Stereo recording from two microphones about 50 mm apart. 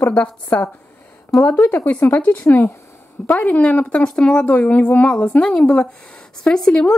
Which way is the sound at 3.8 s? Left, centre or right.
Centre.